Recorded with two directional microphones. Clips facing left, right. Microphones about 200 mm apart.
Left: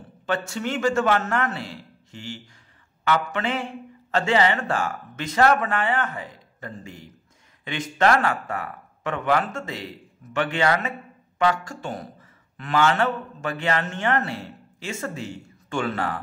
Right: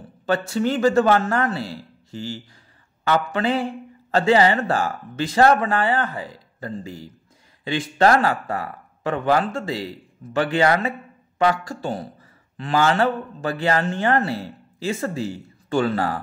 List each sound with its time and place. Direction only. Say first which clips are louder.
0.3 s speech: right 5 dB; 35° right (ahead or behind)